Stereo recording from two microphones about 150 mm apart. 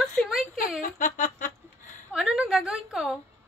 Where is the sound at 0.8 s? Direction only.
65° left (ahead or behind).